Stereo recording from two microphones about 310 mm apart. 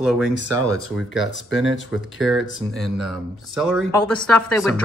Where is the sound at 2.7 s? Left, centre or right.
Centre.